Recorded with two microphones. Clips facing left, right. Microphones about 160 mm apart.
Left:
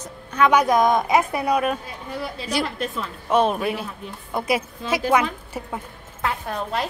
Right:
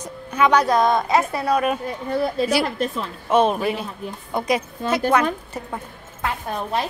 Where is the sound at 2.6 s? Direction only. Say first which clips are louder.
Right 3 dB; 40° right (ahead or behind).